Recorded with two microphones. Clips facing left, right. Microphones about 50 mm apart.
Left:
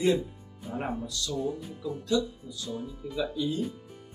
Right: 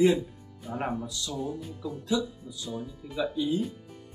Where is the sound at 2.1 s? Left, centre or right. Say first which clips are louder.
Left 1 dB; centre.